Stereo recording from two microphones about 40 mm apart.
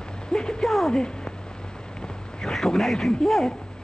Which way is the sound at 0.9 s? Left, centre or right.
Left.